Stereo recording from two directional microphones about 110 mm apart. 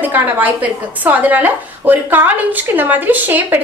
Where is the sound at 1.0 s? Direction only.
15° right (ahead or behind).